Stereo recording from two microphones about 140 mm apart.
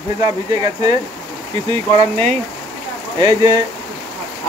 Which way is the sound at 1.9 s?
50° right (ahead or behind).